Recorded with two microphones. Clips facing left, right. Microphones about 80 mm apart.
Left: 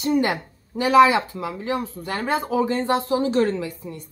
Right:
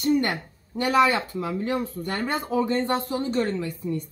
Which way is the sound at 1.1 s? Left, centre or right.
Centre.